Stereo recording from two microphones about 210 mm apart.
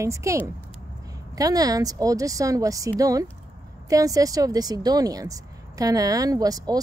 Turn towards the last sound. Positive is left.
turn(degrees=-15)  # may be behind; listen again after turning